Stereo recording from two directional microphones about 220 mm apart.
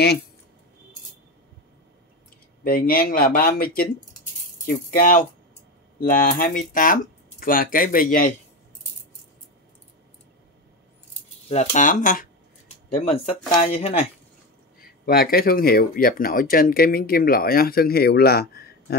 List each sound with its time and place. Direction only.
2.6 s speech: 40° left (ahead or behind)
11.4 s speech: 30° left (ahead or behind)
14.8 s speech: 45° left (ahead or behind)